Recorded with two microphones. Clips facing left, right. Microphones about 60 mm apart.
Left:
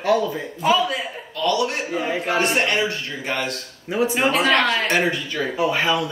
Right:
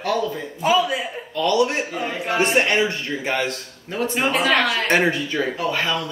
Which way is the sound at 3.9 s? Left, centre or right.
Centre.